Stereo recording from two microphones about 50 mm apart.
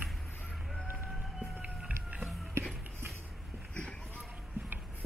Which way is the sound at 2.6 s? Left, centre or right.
Right.